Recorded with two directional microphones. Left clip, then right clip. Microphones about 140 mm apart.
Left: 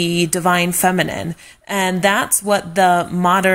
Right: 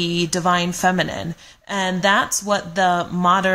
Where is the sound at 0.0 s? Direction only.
25° left (ahead or behind).